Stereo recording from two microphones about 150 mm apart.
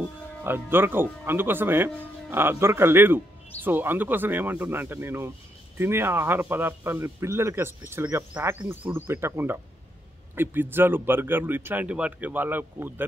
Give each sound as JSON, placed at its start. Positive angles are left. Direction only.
{"t": 0.4, "sound": "speech", "side_deg": -15}